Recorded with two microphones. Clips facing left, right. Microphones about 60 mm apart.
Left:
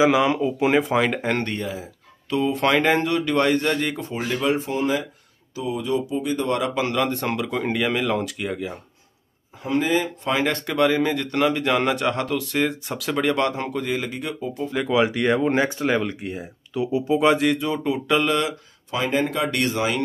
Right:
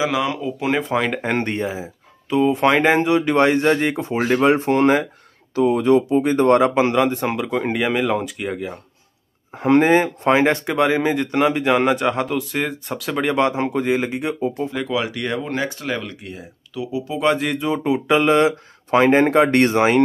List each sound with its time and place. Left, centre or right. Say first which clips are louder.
0.0 s speech: left 3 dB; centre
1.4 s speech: right 4 dB; right
2.2 s speech: right 5 dB; centre; by 4.2 s right
4.2 s speech: right 7 dB; right
4.6 s speech: right 7 dB; right
7.1 s speech: right 3 dB; centre
9.6 s speech: right 7 dB; right
14.9 s speech: left 4 dB; centre
17.1 s speech: left 1 dB; centre
18.1 s speech: right 6 dB; right
18.9 s speech: right 9 dB; right